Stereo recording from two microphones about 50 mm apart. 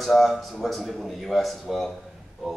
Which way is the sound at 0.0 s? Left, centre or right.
Centre.